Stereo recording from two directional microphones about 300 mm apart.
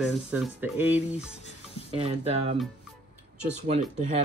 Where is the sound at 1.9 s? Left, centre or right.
Centre.